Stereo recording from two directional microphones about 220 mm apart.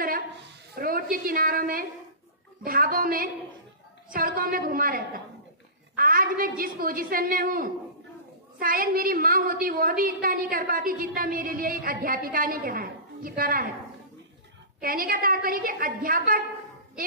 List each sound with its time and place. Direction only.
0.0 s a sound: 40° right (ahead or behind)
1.1 s a woman's voice: 40° right (ahead or behind)
14.8 s a woman's voice: 40° right (ahead or behind)